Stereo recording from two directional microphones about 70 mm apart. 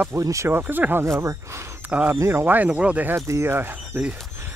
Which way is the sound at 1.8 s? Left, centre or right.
Right.